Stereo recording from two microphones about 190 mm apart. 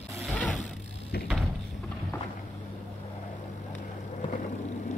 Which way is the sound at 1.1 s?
55° left (ahead or behind).